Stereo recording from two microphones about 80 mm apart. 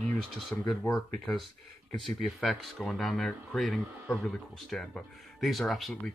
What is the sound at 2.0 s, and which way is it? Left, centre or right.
Speech, centre.